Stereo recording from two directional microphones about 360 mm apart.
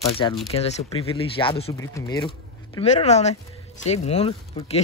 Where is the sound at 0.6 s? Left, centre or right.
Centre.